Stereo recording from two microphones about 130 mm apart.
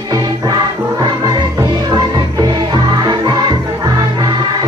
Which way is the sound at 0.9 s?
30° right (ahead or behind).